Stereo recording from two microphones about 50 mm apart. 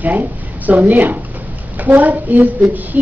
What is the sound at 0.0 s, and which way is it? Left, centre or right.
A woman's voice, right.